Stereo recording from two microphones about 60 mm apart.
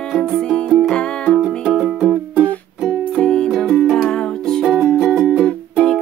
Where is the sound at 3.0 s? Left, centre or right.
Centre.